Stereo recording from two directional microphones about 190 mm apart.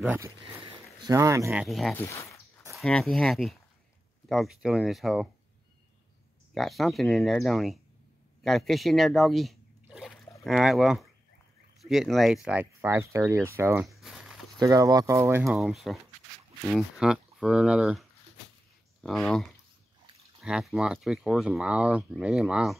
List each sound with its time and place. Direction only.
0.0 s speech: 10° right (ahead or behind)
1.5 s speech: centre (ahead or behind)
6.5 s speech: centre (ahead or behind)
13.8 s a sound: centre (ahead or behind)
14.6 s speech: 20° right (ahead or behind)
15.4 s speech: centre (ahead or behind)
19.0 s speech: 5° left (ahead or behind)
20.4 s speech: centre (ahead or behind)